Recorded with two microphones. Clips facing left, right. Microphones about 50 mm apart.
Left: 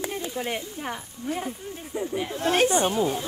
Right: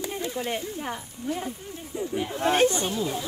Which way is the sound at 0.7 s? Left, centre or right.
Centre.